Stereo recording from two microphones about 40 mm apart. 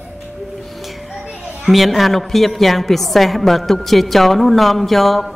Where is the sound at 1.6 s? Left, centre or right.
Centre.